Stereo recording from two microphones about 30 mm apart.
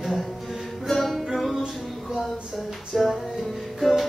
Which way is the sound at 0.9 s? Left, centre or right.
Centre.